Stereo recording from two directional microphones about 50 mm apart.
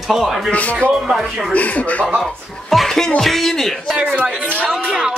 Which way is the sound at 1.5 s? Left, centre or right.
Left.